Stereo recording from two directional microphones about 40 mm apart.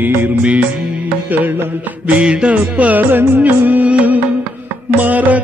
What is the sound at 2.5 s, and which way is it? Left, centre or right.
Music, right.